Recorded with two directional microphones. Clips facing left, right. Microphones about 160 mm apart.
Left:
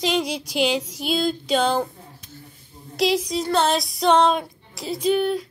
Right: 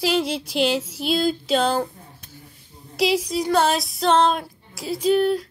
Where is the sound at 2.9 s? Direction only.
5° right (ahead or behind).